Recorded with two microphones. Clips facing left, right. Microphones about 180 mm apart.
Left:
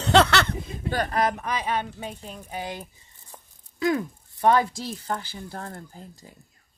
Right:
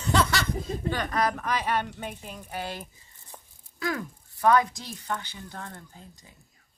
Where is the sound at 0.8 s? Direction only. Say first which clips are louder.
Left 4 dB; 40° left (ahead or behind).